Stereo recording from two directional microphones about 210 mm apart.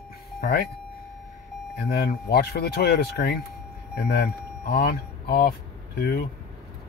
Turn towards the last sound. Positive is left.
turn(degrees=45)  # may be behind; listen again after turning